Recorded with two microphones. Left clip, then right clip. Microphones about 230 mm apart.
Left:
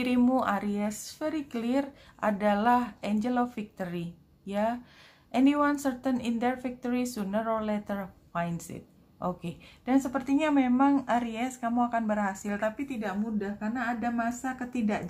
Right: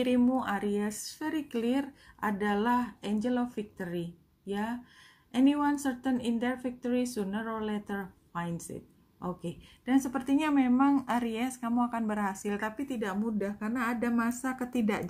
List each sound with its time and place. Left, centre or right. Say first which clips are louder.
0.0 s a woman's voice: left 2 dB; centre